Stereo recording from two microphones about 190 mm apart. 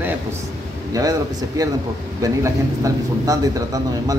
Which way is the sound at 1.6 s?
20° right (ahead or behind).